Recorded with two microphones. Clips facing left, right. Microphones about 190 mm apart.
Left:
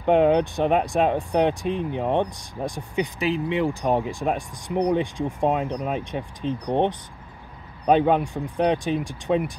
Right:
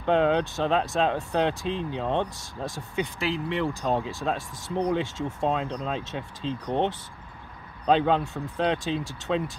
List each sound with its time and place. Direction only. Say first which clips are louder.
0.0 s speech: left 4 dB; 15° left (ahead or behind)